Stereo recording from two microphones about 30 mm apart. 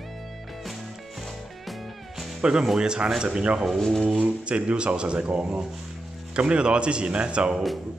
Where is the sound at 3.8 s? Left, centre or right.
Centre.